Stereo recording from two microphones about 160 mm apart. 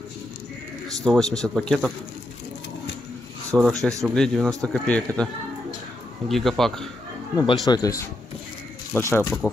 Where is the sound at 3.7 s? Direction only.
20° right (ahead or behind).